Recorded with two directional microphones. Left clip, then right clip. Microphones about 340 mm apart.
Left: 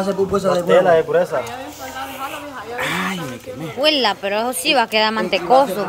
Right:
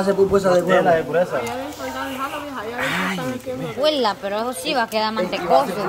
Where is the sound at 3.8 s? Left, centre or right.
Centre.